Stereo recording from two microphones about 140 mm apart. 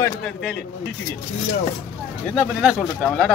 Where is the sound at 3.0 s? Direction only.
10° left (ahead or behind).